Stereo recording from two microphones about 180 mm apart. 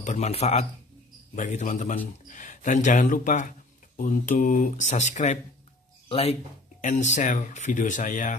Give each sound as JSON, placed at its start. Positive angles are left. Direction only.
{"t": 0.0, "sound": "speech", "side_deg": 40}